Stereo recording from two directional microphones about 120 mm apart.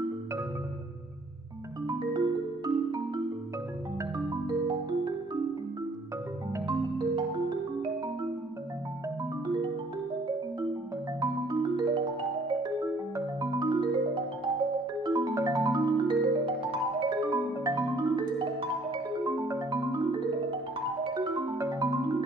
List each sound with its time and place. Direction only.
1.9 s music: 35° right (ahead or behind)
4.5 s music: 40° right (ahead or behind)
7.0 s music: 40° right (ahead or behind)
11.1 s music: 35° right (ahead or behind)
13.1 s music: 35° right (ahead or behind)
15.0 s music: 30° right (ahead or behind)
19.2 s music: 30° right (ahead or behind)
21.0 s music: 35° right (ahead or behind)